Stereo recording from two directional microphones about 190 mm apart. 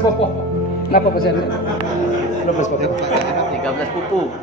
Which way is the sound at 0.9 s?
55° left (ahead or behind).